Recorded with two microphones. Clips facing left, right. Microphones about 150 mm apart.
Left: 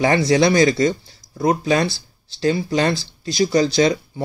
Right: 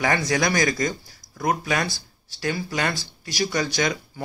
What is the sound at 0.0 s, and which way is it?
Speech, 30° left (ahead or behind).